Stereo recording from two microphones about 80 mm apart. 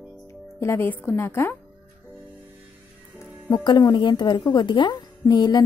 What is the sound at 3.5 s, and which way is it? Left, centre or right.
A woman's voice, left.